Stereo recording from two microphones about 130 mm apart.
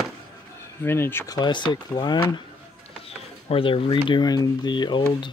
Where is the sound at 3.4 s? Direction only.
45° left (ahead or behind).